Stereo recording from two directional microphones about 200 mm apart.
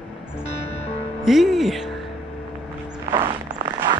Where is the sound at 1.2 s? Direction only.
Centre (ahead or behind).